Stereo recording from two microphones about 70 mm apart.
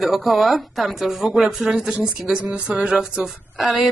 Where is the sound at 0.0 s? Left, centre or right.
Centre.